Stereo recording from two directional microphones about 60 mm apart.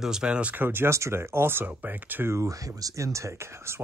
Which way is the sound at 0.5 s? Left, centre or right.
Right.